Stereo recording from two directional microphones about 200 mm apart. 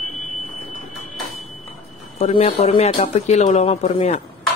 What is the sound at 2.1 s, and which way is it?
Speech, 35° left (ahead or behind).